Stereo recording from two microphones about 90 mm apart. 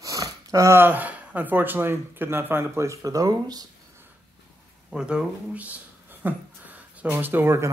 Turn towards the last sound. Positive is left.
turn(degrees=-30)  # may be behind; listen again after turning